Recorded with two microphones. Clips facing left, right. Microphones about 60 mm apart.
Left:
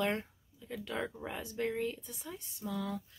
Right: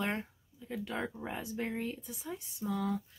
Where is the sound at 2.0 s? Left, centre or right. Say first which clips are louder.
Right 3 dB; centre.